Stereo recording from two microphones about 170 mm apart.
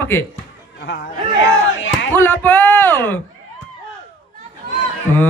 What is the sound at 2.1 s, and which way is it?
Speech, 10° left (ahead or behind).